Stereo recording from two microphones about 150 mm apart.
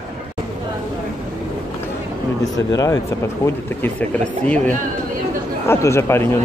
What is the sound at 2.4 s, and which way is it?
Speech, 20° left (ahead or behind).